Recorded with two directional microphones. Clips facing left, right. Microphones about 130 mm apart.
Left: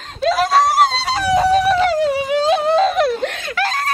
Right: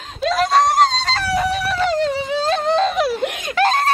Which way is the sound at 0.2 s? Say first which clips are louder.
Left 1 dB; centre (ahead or behind).